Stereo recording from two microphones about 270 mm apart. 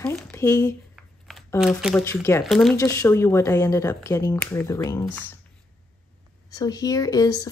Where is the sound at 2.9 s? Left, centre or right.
Centre.